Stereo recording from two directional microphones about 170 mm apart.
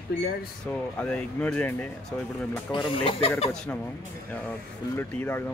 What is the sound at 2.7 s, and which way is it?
Speech, 30° left (ahead or behind).